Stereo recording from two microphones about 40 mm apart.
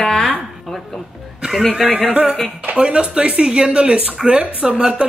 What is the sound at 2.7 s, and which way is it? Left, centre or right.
Speech, right.